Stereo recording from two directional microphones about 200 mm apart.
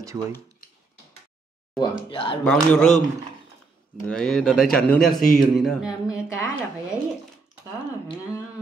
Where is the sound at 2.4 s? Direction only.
5° left (ahead or behind).